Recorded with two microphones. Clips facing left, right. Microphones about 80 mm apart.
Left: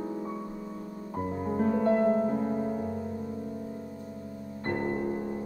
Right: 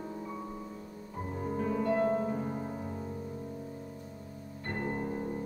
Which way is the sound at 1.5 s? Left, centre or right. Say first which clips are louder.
Left 6 dB; left.